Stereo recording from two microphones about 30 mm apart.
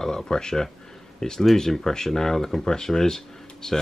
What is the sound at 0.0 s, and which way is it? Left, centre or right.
Speech, centre.